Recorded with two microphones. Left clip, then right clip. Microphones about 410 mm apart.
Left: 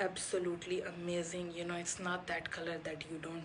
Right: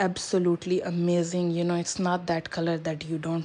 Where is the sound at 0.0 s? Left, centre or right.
Centre.